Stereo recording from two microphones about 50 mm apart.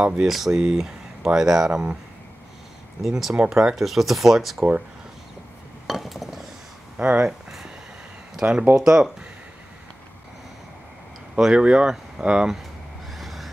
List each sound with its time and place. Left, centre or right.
0.0 s speech: centre
0.3 s speech: centre
3.0 s speech: centre
5.9 s chink: centre
7.0 s speech: right
7.2 s a sound: centre
8.4 s speech: centre
11.5 s speech: centre
13.1 s vehicle: centre